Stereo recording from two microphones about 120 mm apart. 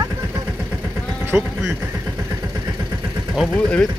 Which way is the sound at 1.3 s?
5° right (ahead or behind).